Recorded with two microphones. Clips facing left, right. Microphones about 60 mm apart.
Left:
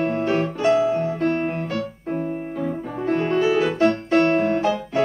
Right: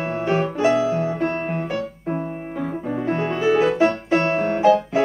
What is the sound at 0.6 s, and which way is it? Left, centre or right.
Music, centre.